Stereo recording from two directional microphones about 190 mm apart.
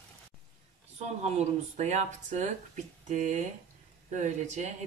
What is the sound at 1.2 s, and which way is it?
Speech, 35° right (ahead or behind).